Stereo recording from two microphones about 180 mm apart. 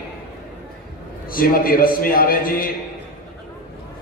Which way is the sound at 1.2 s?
50° left (ahead or behind).